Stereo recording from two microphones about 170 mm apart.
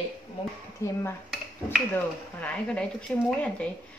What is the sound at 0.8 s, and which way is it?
Speech, 15° left (ahead or behind).